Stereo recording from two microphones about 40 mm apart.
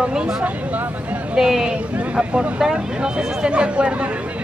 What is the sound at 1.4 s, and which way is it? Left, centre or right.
Speech, centre.